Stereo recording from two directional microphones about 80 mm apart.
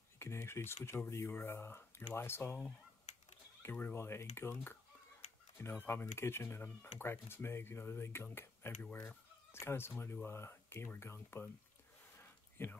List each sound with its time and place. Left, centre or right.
0.2 s speech: left
3.9 s speech: left
12.2 s a sound: left